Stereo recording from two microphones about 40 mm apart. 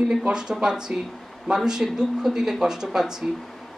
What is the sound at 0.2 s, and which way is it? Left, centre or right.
Speech, centre.